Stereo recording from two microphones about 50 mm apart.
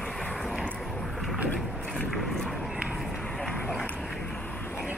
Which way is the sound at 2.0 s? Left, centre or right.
Centre.